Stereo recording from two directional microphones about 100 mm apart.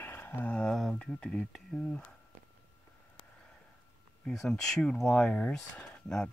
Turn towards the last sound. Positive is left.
turn(degrees=10)  # may be behind; listen again after turning